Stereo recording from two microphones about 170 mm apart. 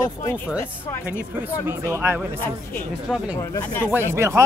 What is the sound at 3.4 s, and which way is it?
Speech, 15° left (ahead or behind).